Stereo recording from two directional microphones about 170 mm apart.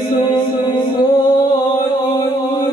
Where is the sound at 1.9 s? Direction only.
25° left (ahead or behind).